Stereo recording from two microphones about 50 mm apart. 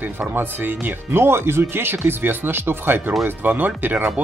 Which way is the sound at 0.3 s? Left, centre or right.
Right.